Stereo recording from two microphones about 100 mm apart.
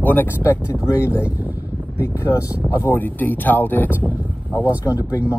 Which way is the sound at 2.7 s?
25° left (ahead or behind).